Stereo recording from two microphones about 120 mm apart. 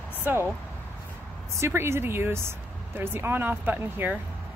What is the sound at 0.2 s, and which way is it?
Speech, 15° right (ahead or behind).